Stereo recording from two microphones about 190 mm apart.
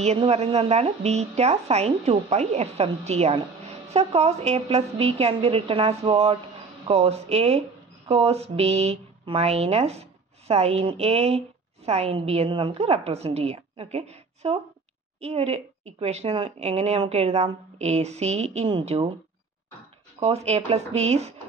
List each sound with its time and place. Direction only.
0.0 s speech: 35° right (ahead or behind)
20.2 s speech: 35° right (ahead or behind)